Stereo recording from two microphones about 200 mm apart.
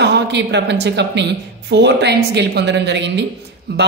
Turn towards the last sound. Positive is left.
turn(degrees=-55)  # may be behind; listen again after turning